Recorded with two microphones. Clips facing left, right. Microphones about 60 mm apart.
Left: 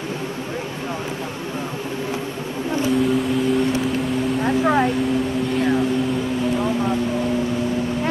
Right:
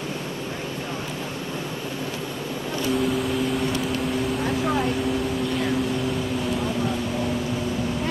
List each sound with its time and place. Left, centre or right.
2.9 s vehicle: centre
4.6 s vehicle: left